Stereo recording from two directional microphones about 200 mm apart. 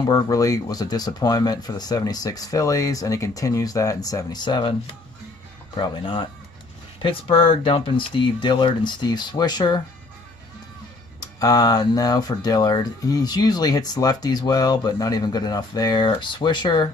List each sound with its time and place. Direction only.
0.0 s speech: 20° left (ahead or behind)
5.8 s speech: 25° left (ahead or behind)
11.1 s speech: 20° left (ahead or behind)